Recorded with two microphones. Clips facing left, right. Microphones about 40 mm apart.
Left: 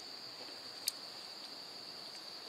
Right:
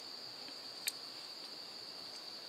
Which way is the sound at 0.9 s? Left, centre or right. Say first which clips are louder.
Right 1 dB; right.